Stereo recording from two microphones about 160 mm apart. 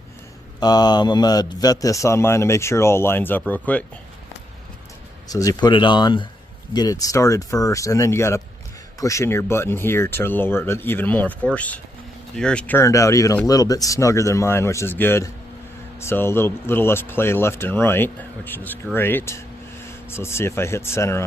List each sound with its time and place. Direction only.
0.6 s a man's voice: 25° left (ahead or behind); by 3.8 s 10° left (ahead or behind)
5.3 s a man's voice: 20° left (ahead or behind)